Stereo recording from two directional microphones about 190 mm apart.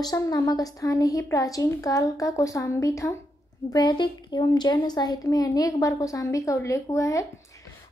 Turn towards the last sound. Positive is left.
turn(degrees=15)  # may be behind; listen again after turning